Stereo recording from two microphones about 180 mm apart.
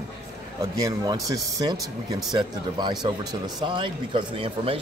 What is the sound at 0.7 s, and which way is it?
Speech, 20° right (ahead or behind).